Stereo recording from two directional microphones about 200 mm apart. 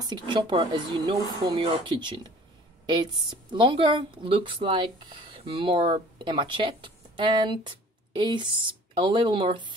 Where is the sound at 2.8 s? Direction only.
20° right (ahead or behind).